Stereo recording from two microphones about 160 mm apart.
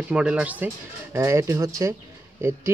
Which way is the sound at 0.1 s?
5° right (ahead or behind).